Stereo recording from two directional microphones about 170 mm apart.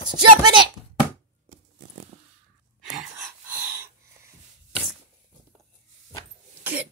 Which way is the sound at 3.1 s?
15° right (ahead or behind).